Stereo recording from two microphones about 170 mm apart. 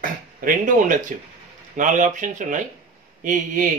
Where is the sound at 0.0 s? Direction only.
50° right (ahead or behind).